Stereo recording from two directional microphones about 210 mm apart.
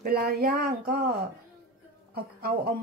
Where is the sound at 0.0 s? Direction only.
45° right (ahead or behind).